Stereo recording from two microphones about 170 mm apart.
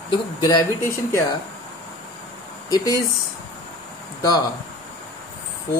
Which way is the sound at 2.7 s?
20° left (ahead or behind).